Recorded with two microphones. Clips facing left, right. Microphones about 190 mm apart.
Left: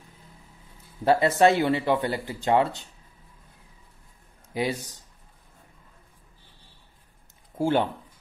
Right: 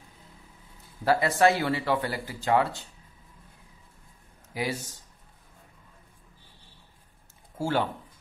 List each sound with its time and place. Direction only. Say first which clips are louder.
1.0 s speech: left 3 dB; 20° left (ahead or behind)
4.6 s speech: left 4 dB; 20° left (ahead or behind)
7.5 s speech: left 4 dB; 20° left (ahead or behind)